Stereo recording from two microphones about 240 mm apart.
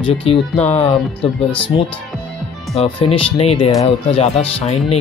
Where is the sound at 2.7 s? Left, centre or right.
Left.